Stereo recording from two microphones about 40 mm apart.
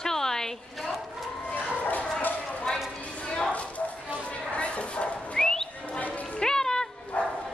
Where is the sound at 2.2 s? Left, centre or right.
Left.